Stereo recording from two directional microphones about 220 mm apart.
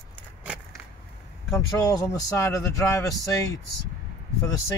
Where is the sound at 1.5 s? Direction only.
15° left (ahead or behind).